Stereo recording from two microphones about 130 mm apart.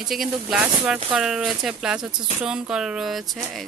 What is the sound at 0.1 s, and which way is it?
Speech, centre (ahead or behind).